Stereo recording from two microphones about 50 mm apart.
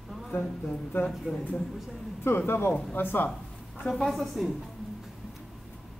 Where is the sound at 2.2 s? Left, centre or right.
Left.